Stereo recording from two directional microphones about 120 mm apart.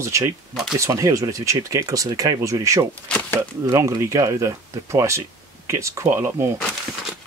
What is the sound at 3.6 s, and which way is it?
Speech, 25° right (ahead or behind).